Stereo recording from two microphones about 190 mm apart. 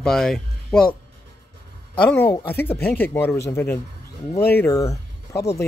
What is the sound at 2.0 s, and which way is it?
Speech, 10° left (ahead or behind).